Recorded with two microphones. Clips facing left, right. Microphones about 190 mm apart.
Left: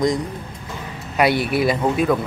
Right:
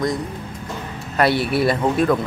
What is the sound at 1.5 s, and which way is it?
Speech, 5° left (ahead or behind).